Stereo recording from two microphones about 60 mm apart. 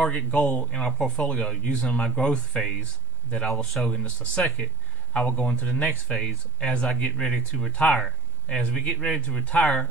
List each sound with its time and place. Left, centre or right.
0.1 s speech: centre
1.1 s speech: centre
3.4 s speech: centre; by 5.9 s left
6.0 s speech: centre
7.7 s speech: left